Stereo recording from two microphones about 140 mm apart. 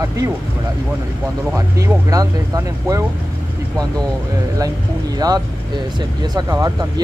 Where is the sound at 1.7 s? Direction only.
25° right (ahead or behind).